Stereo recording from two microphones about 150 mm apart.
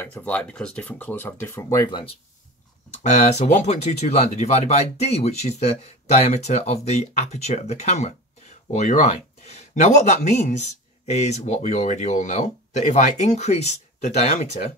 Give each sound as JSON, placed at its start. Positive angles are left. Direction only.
{"t": 0.0, "sound": "speech", "side_deg": 10}
{"t": 3.0, "sound": "speech", "side_deg": 50}